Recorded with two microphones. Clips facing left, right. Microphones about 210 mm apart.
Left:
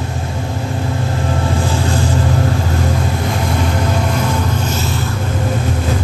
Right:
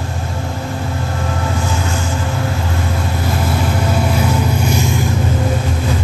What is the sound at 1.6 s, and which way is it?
Vehicle, 35° left (ahead or behind).